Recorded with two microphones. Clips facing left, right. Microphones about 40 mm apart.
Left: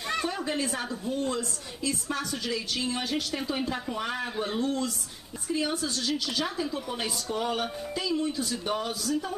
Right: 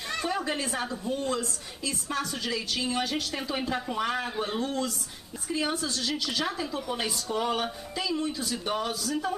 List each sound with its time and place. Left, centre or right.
0.3 s a woman's voice: centre
1.1 s a woman's voice: right
1.9 s a woman's voice: centre